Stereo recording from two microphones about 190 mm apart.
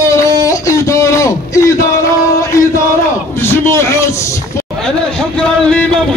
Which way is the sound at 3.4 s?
15° left (ahead or behind).